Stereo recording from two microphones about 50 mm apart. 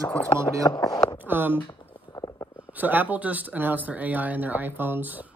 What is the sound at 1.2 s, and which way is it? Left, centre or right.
Speech, right.